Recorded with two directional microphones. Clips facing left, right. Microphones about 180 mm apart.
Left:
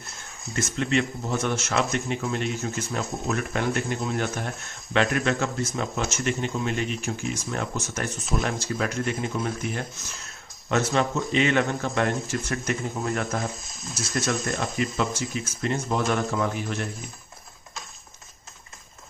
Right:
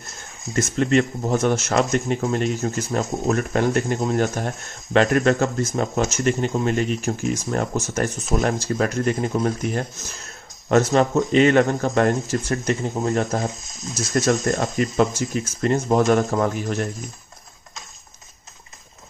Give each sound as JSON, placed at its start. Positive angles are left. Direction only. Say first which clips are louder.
{"t": 0.7, "sound": "speech", "louder": "right 6 dB", "side_deg": -45}
{"t": 13.9, "sound": "speech", "louder": "right 7 dB", "side_deg": -45}